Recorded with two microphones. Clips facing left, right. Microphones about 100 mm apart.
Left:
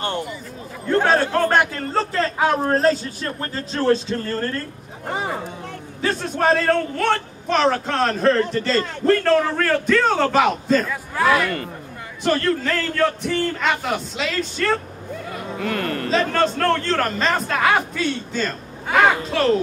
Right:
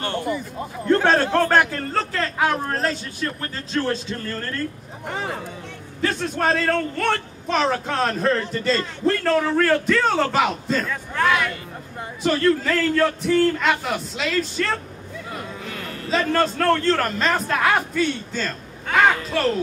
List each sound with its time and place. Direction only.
0.8 s a man's voice: 10° left (ahead or behind); by 4.5 s 30° left (ahead or behind)
5.0 s speech: 20° left (ahead or behind)
5.9 s speech: centre (ahead or behind)
15.5 s speech: 60° left (ahead or behind)
16.1 s speech: centre (ahead or behind)
18.4 s speech: 10° left (ahead or behind)